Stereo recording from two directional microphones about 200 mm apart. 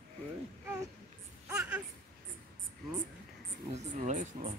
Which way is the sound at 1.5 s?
10° right (ahead or behind).